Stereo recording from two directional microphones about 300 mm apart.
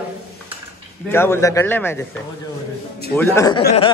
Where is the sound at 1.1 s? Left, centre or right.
Centre.